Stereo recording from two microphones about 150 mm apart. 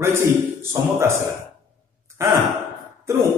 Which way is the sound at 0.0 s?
15° right (ahead or behind).